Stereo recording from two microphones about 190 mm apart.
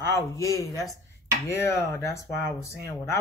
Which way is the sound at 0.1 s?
15° left (ahead or behind).